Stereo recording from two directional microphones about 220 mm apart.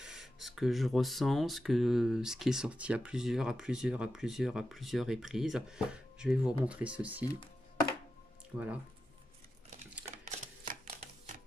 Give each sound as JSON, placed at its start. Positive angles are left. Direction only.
{"t": 0.0, "sound": "speech", "side_deg": 0}
{"t": 10.1, "sound": "typewriter", "side_deg": -35}